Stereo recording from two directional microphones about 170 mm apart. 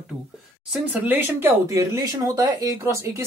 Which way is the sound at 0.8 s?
10° right (ahead or behind).